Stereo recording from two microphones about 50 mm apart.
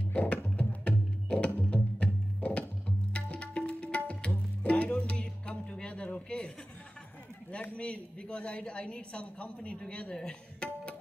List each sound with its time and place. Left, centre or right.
0.0 s music: left
3.1 s tabla: left
4.6 s music: left
7.7 s a woman's voice: left